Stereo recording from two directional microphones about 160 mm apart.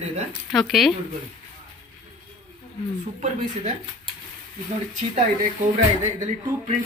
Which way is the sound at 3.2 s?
45° right (ahead or behind).